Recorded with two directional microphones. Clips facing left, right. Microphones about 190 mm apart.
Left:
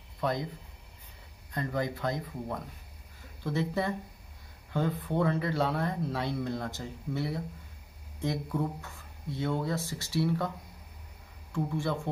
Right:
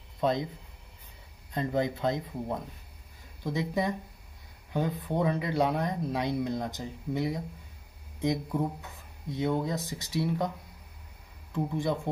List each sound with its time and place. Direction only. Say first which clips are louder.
0.2 s speech: right 3 dB; 20° right (ahead or behind)
1.5 s speech: right 3 dB; 20° right (ahead or behind)
11.5 s speech: right 2 dB; 15° right (ahead or behind)